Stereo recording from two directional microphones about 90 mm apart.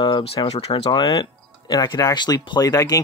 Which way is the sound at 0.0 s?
70° left (ahead or behind).